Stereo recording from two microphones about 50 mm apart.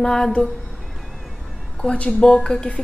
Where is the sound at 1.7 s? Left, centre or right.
Left.